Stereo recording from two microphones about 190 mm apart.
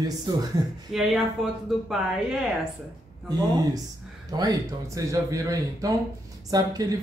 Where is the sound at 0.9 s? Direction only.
Centre (ahead or behind).